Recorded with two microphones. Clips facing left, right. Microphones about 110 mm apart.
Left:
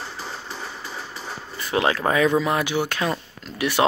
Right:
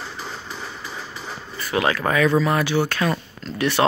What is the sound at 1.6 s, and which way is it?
Speech, 25° left (ahead or behind).